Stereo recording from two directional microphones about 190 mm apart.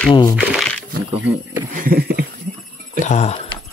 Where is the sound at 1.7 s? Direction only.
50° right (ahead or behind).